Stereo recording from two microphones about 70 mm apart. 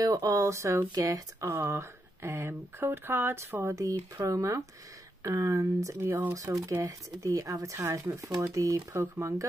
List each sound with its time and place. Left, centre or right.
0.0 s speech: right
8.4 s speech: right